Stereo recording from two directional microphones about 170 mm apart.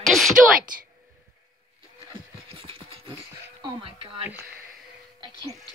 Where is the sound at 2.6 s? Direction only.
30° right (ahead or behind).